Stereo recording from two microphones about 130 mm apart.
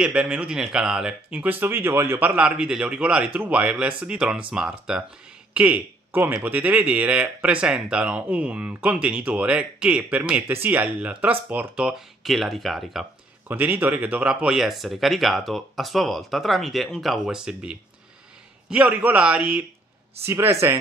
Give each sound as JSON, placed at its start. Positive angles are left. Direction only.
{"t": 0.0, "sound": "speech", "side_deg": -10}
{"t": 13.5, "sound": "speech", "side_deg": -15}